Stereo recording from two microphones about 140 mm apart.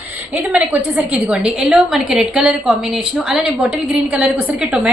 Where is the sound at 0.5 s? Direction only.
10° right (ahead or behind).